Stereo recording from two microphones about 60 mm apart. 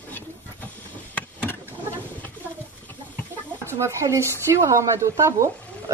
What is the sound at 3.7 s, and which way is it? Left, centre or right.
Speech, right.